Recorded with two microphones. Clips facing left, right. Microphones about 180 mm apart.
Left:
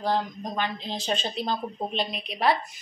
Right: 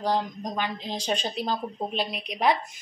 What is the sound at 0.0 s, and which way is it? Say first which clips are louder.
A woman's voice: even; 15° right (ahead or behind).